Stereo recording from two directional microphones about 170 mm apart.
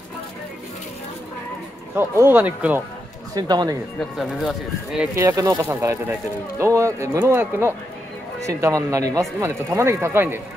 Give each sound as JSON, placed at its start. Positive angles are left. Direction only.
{"t": 2.0, "sound": "speech", "side_deg": -15}
{"t": 3.3, "sound": "speech", "side_deg": -25}
{"t": 4.0, "sound": "speech", "side_deg": 0}